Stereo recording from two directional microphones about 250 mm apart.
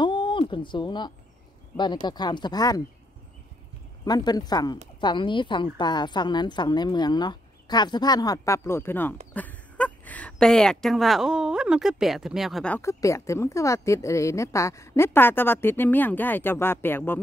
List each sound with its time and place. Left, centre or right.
0.0 s a sound: centre
1.8 s speech: centre
4.0 s speech: centre